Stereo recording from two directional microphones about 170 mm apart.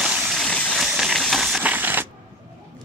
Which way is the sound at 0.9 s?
Centre (ahead or behind).